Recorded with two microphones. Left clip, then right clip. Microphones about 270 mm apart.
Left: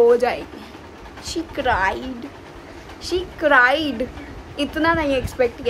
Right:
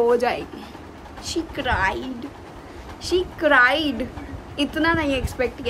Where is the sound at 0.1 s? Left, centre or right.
Centre.